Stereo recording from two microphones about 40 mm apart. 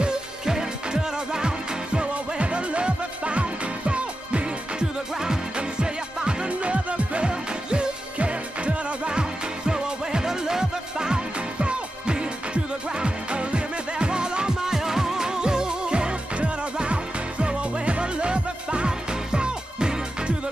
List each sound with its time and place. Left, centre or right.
0.5 s music: centre
5.1 s music: centre